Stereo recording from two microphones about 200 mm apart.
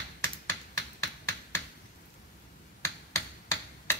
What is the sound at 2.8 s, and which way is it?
Finger snapping, 10° left (ahead or behind).